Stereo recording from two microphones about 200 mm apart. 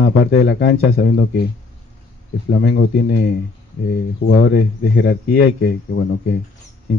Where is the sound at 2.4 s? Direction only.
50° left (ahead or behind).